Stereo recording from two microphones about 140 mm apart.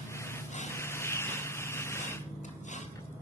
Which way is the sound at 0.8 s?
20° left (ahead or behind).